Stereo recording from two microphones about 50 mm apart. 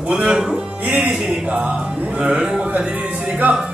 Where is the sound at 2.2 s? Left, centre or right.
Centre.